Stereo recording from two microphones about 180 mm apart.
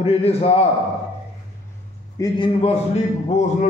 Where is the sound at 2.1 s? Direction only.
20° left (ahead or behind).